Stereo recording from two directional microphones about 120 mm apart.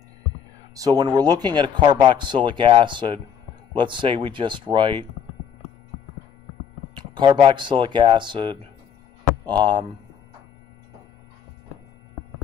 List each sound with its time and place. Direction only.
0.7 s speech: 30° right (ahead or behind)
7.0 s speech: 40° right (ahead or behind)